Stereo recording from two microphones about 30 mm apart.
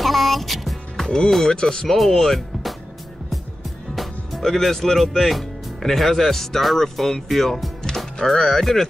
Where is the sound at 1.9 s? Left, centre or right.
Centre.